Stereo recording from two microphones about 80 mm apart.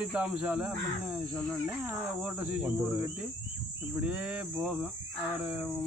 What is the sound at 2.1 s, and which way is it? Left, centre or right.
Speech, centre.